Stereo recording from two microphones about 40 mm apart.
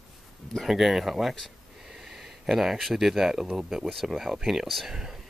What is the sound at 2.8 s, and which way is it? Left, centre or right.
Speech, centre.